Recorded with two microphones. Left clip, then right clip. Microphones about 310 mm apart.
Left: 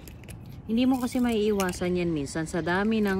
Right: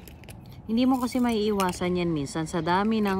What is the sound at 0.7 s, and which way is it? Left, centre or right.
Coin, centre.